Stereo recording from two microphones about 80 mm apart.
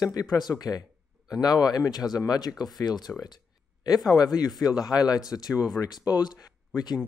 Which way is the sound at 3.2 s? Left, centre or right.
Left.